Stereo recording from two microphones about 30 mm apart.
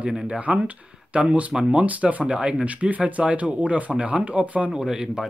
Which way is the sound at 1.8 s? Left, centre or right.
Right.